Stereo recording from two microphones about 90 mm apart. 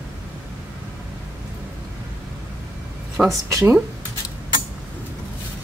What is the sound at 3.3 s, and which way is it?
Speech, 35° right (ahead or behind).